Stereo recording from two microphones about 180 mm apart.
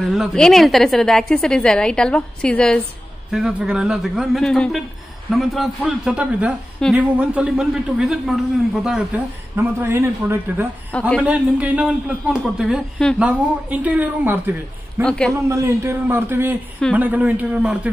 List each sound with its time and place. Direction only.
0.0 s a woman's voice: centre (ahead or behind)
9.6 s a man's voice: 10° right (ahead or behind)
10.9 s a man's voice: 5° left (ahead or behind)
11.2 s a man's voice: 10° right (ahead or behind)
15.0 s a woman's voice: 5° left (ahead or behind)
15.4 s a man's voice: 15° right (ahead or behind)